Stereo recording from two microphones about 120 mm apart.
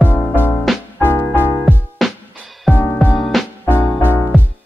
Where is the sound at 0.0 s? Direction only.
15° left (ahead or behind).